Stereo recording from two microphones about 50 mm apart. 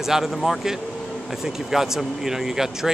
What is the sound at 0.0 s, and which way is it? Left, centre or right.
Speech, centre.